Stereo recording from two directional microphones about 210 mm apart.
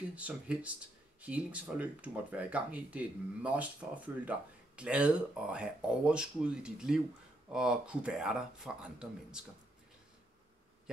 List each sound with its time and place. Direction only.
0.1 s speech: 5° right (ahead or behind)